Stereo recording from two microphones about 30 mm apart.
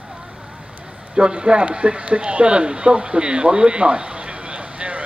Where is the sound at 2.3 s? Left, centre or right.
Right.